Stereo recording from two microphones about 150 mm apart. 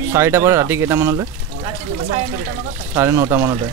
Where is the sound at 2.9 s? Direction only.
20° right (ahead or behind).